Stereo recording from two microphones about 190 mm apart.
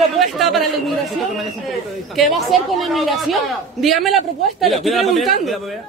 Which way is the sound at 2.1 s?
Centre (ahead or behind).